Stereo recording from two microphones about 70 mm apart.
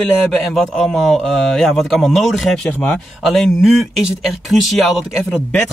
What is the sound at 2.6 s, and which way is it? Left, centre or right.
Speech, centre.